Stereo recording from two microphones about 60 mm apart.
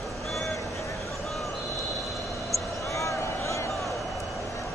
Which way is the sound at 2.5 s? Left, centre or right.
Left.